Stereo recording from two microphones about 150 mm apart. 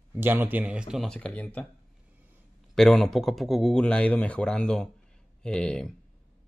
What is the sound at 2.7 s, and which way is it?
Speech, 5° left (ahead or behind).